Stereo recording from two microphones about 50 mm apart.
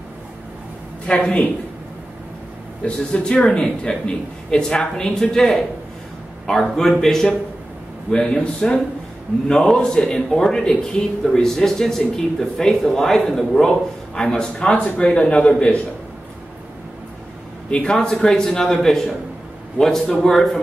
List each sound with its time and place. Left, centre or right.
1.0 s speech: left
2.8 s a man's voice: centre
17.6 s a man's voice: centre